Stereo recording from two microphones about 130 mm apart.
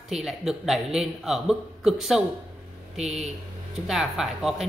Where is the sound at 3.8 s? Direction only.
5° right (ahead or behind).